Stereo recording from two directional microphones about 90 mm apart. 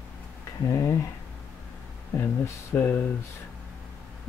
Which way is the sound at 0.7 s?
35° left (ahead or behind).